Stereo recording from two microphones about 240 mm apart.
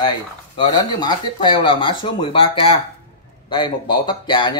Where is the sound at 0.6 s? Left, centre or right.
Centre.